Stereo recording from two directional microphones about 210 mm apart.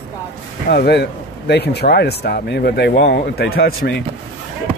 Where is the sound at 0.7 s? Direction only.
50° left (ahead or behind).